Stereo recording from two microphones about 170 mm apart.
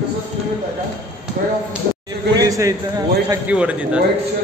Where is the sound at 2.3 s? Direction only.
20° right (ahead or behind).